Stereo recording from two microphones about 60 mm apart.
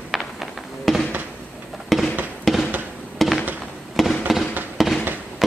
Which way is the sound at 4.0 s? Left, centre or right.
Centre.